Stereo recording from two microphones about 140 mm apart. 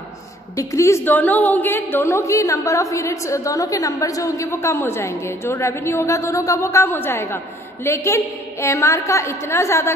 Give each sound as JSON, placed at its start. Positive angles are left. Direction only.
{"t": 0.6, "sound": "a woman's voice", "side_deg": 20}